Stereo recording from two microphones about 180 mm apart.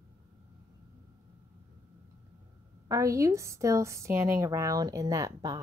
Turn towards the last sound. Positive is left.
turn(degrees=-20)  # may be behind; listen again after turning